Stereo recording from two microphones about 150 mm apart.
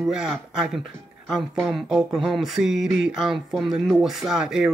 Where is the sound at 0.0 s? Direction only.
5° right (ahead or behind).